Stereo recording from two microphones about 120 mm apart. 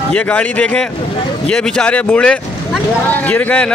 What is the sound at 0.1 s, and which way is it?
A man's voice, 10° left (ahead or behind).